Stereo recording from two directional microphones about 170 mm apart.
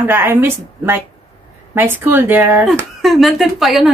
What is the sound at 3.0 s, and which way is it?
Speech, centre (ahead or behind).